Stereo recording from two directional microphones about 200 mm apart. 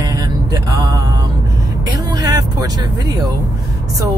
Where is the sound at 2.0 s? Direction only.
20° right (ahead or behind).